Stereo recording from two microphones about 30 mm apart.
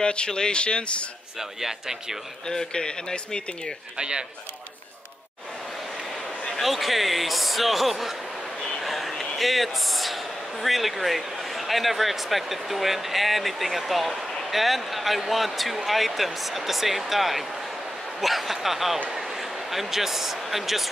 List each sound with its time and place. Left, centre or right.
0.0 s speech: left
1.6 s speech: centre
2.4 s a man's voice: left
6.6 s speech: centre
8.7 s a sound: centre
9.1 s a man's voice: centre